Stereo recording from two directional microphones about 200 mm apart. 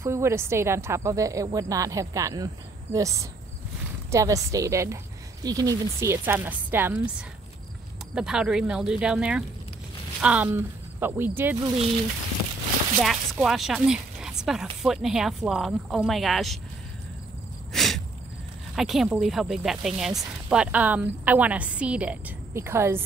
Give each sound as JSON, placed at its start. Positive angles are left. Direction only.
{"t": 0.0, "sound": "speech", "side_deg": -15}
{"t": 13.0, "sound": "speech", "side_deg": 0}
{"t": 17.7, "sound": "a sound", "side_deg": 0}
{"t": 18.8, "sound": "speech", "side_deg": 0}